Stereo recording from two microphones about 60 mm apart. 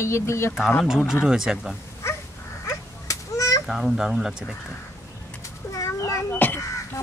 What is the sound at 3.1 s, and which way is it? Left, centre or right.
Honk, left.